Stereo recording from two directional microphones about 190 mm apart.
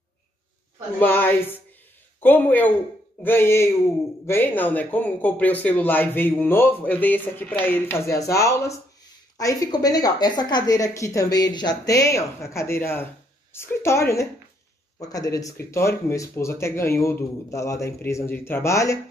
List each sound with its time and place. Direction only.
0.9 s speech: 10° left (ahead or behind)